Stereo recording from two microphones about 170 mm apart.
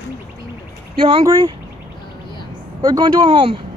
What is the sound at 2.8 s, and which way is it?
Speech, 25° right (ahead or behind).